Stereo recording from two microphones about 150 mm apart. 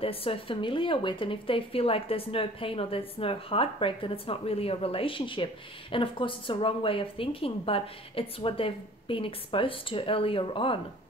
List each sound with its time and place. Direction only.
0.0 s speech: 40° left (ahead or behind)